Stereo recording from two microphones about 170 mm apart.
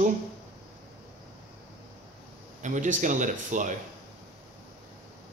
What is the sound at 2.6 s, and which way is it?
Speech, 45° right (ahead or behind).